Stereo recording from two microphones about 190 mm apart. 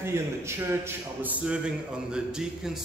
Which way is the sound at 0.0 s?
15° right (ahead or behind).